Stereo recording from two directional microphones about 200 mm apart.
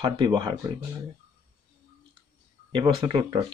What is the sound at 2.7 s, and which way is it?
Speech, 25° right (ahead or behind).